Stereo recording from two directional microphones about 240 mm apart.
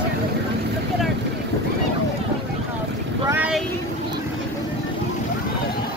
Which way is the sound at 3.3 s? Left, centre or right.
Centre.